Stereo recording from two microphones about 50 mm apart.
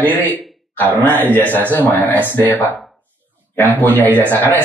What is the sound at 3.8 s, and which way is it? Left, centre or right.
Speech, left.